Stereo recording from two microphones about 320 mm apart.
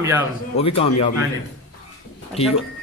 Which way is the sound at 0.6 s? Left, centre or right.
Centre.